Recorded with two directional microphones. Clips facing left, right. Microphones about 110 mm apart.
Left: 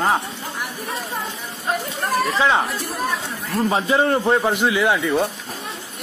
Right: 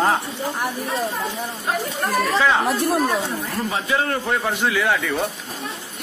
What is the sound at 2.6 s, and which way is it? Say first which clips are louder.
Speech: right 7 dB; 60° right (ahead or behind).